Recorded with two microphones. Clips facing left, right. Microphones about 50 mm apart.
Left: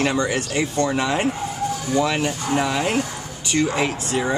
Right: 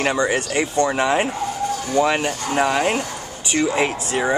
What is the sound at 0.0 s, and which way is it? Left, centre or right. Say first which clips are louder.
A man's voice: right 1 dB; centre.